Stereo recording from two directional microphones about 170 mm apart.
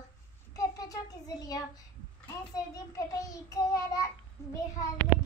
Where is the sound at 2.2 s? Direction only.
20° left (ahead or behind).